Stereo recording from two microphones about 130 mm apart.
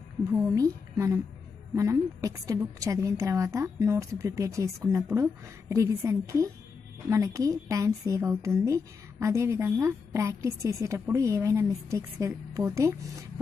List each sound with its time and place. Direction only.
0.3 s a woman's voice: 20° right (ahead or behind)